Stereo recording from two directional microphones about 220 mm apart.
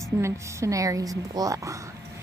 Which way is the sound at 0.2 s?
15° right (ahead or behind).